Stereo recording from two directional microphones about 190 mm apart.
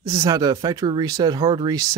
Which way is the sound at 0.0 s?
15° right (ahead or behind).